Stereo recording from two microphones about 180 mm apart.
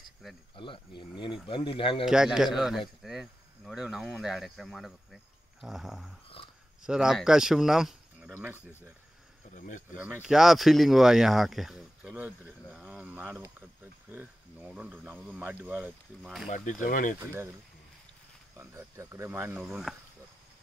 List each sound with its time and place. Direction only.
0.6 s speech: 30° left (ahead or behind)
2.0 s speech: 5° right (ahead or behind)
6.2 s a sound: 30° left (ahead or behind)
6.8 s speech: 5° right (ahead or behind)
9.5 s speech: 45° left (ahead or behind)
9.9 s speech: 10° right (ahead or behind)
16.4 s speech: 45° left (ahead or behind)
17.2 s speech: 15° right (ahead or behind)
18.6 s speech: 15° right (ahead or behind)
19.6 s speech: centre (ahead or behind)